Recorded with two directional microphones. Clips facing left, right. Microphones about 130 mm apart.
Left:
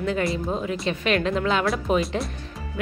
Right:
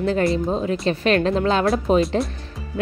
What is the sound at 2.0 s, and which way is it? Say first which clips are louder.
Speech: right 5 dB; centre (ahead or behind).